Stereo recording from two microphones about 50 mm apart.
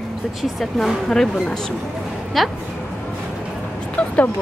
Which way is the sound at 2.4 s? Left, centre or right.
Centre.